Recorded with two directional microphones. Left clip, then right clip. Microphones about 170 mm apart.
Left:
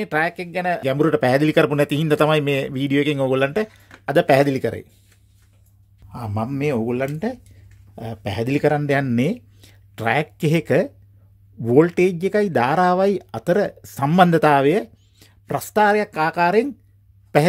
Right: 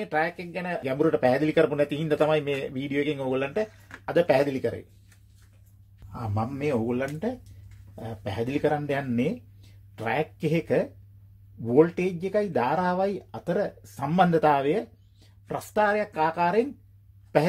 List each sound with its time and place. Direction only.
0.0 s speech: 65° left (ahead or behind)
6.1 s speech: 45° left (ahead or behind); by 16.6 s 60° left (ahead or behind)